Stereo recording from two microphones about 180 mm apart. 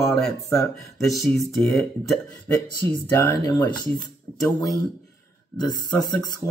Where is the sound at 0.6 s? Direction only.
Centre (ahead or behind).